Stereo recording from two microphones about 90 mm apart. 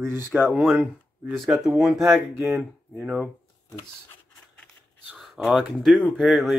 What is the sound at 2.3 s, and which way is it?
Speech, 25° right (ahead or behind).